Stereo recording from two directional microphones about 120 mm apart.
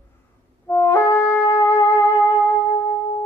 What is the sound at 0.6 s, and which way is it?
Music, 20° left (ahead or behind).